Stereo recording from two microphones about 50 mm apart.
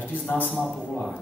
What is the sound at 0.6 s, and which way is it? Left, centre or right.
Speech, left.